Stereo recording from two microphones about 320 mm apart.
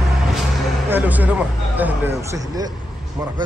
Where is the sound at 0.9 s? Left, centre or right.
Centre.